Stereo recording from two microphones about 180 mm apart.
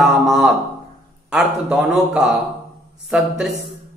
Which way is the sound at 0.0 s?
Centre (ahead or behind).